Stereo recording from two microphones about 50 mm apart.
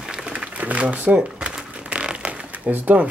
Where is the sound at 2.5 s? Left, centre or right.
Right.